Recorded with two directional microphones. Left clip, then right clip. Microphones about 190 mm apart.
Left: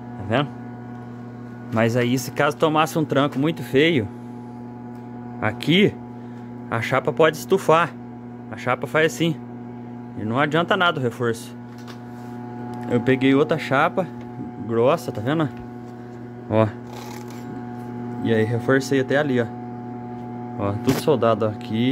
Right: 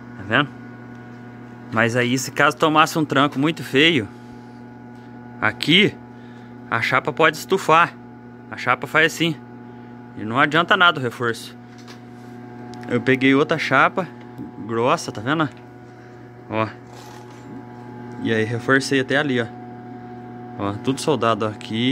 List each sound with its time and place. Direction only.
0.3 s speech: centre (ahead or behind)
1.7 s speech: centre (ahead or behind)
5.4 s speech: 5° left (ahead or behind)
12.7 s speech: 5° left (ahead or behind)
16.4 s speech: 25° left (ahead or behind)
18.2 s speech: centre (ahead or behind)
20.5 s speech: 10° right (ahead or behind)